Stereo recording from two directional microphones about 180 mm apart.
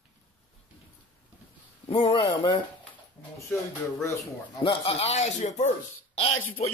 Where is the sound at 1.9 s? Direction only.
30° left (ahead or behind).